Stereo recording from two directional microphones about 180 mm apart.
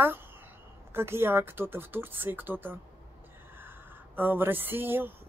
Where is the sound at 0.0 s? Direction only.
10° right (ahead or behind).